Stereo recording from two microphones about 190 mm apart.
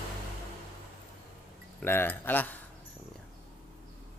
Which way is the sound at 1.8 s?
10° left (ahead or behind).